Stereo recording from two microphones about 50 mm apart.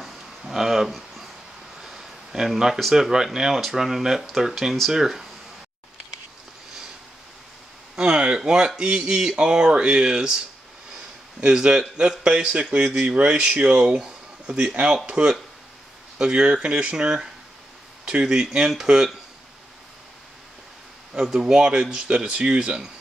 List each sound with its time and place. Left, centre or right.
0.0 s a sound: centre
1.8 s speech: centre
7.9 s a sound: centre
8.5 s speech: centre
11.4 s speech: centre
21.1 s speech: centre